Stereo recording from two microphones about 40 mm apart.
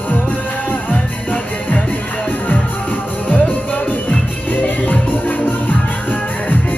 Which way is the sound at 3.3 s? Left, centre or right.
Left.